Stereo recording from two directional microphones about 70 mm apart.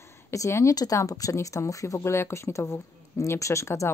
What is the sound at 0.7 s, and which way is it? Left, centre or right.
Speech, left.